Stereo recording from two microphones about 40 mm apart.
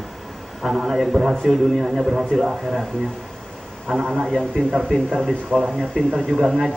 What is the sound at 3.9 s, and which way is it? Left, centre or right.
A man's voice, centre.